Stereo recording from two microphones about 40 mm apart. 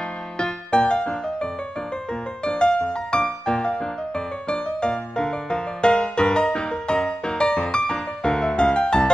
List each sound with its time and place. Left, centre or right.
0.4 s music: left